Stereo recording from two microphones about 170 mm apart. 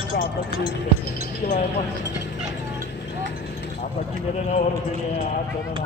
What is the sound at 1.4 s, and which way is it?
Speech, 65° left (ahead or behind).